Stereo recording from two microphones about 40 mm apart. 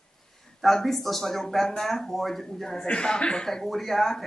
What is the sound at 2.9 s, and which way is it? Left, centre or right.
Speech, left.